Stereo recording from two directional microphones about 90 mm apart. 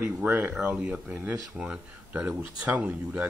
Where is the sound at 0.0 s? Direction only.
30° right (ahead or behind).